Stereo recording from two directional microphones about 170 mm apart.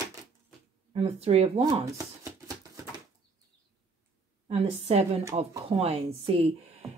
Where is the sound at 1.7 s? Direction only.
20° right (ahead or behind).